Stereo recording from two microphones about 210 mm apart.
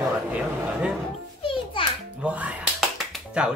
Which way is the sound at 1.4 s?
25° left (ahead or behind).